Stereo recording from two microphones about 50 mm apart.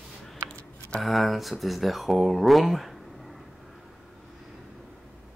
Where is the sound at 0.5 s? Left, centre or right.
Centre.